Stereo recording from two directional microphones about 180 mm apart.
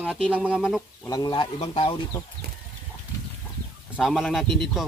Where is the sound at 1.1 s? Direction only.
20° left (ahead or behind).